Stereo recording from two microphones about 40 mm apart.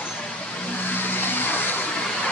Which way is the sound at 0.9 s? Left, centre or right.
Left.